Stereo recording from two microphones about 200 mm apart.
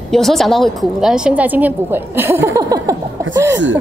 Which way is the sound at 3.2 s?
15° right (ahead or behind).